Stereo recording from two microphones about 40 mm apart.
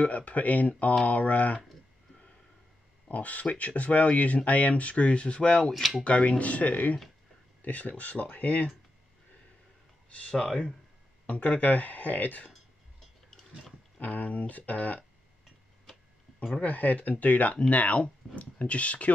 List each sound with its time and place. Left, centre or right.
0.0 s speech: left
3.1 s speech: left
5.7 s speech: centre
6.0 s speech: left
11.2 s speech: left
13.9 s speech: left
16.6 s speech: left